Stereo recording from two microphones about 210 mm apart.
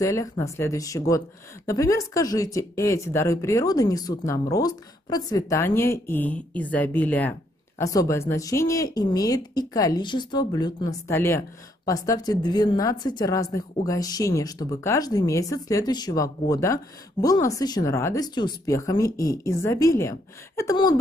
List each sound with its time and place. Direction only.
0.0 s speech: 15° left (ahead or behind)